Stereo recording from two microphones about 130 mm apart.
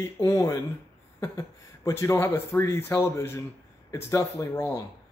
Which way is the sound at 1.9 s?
20° left (ahead or behind).